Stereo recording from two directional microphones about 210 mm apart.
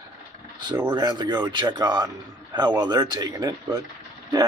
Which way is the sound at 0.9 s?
20° right (ahead or behind).